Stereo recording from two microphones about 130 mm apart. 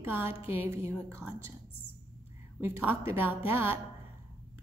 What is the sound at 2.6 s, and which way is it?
A woman's voice, 15° right (ahead or behind).